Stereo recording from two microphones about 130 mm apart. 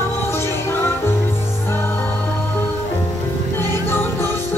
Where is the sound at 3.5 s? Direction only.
15° left (ahead or behind).